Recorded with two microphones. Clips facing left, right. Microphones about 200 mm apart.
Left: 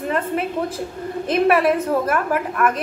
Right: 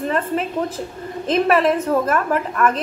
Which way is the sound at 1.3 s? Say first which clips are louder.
Even; 10° left (ahead or behind).